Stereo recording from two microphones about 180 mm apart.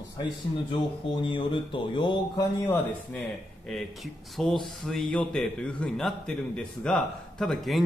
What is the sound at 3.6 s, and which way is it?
Speech, centre (ahead or behind).